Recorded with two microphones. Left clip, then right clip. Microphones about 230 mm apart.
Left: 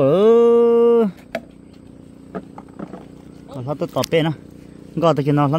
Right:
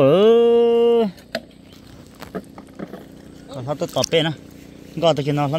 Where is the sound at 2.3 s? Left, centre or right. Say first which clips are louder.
Left 2 dB; right.